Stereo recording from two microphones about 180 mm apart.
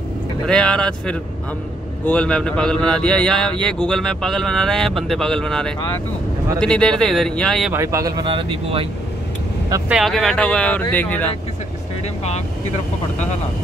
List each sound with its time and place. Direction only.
0.5 s speech: 5° left (ahead or behind)
7.7 s speech: 15° right (ahead or behind)
9.8 s speech: centre (ahead or behind)